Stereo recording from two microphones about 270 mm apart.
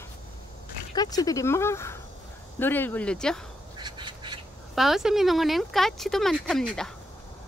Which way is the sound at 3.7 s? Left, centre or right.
Centre.